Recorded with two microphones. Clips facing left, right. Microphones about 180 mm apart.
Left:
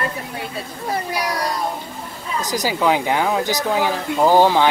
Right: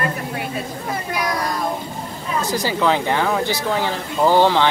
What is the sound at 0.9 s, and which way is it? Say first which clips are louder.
Speech: left 2 dB; 35° left (ahead or behind).